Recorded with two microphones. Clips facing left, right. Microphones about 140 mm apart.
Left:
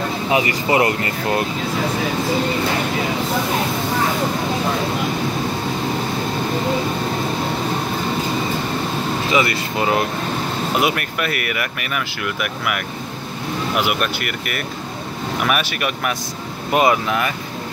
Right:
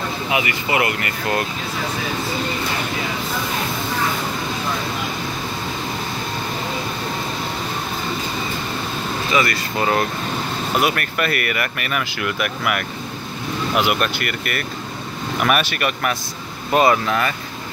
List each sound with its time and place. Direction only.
0.3 s speech: 35° left (ahead or behind)
9.3 s speech: 15° left (ahead or behind)